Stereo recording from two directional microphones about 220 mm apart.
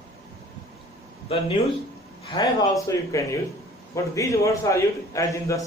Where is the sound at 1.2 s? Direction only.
25° left (ahead or behind).